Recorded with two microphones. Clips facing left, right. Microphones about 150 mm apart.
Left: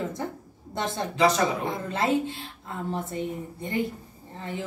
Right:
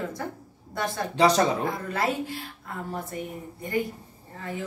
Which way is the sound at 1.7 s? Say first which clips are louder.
Left 2 dB; 25° left (ahead or behind).